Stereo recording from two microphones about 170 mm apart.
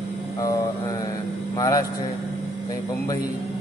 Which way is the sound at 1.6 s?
20° left (ahead or behind).